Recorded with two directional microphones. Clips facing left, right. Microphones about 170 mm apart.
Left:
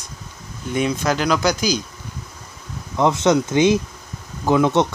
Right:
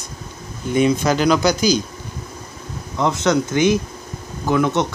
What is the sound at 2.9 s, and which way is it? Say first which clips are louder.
Speech: left 2 dB; 20° left (ahead or behind).